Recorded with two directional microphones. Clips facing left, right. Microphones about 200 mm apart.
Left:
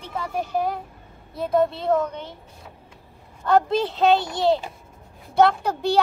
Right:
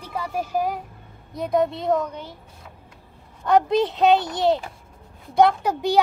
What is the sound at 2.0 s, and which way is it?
Speech, 10° right (ahead or behind).